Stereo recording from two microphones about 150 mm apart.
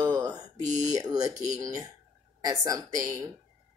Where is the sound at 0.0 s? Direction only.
25° right (ahead or behind).